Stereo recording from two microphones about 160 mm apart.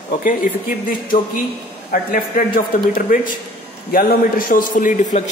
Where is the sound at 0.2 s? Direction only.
55° left (ahead or behind).